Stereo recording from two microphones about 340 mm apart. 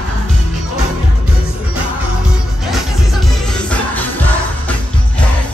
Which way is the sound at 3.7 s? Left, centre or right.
Centre.